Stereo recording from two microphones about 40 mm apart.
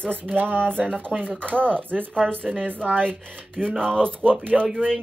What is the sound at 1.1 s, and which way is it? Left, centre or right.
Speech, right.